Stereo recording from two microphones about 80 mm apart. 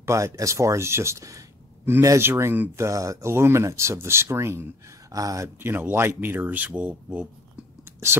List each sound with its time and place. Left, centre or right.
0.0 s speech: right
2.7 s speech: right
5.1 s speech: right
5.7 s speech: right
7.8 s whispering: right